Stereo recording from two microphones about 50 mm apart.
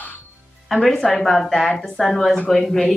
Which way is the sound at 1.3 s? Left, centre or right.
Centre.